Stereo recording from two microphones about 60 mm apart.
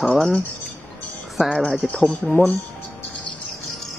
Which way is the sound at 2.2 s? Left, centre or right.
Left.